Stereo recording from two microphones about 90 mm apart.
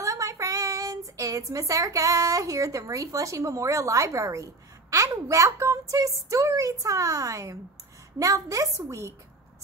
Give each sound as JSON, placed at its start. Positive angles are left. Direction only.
{"t": 0.0, "sound": "speech", "side_deg": -35}